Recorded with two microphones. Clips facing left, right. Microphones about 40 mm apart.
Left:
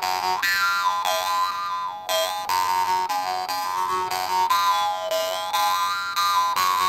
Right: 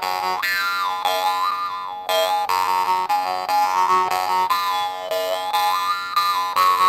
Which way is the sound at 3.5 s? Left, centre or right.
Right.